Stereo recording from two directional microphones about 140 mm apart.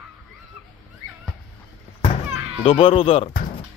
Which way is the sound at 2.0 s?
45° left (ahead or behind).